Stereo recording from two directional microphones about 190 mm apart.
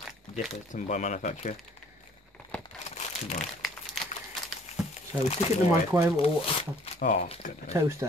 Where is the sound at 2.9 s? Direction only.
40° left (ahead or behind).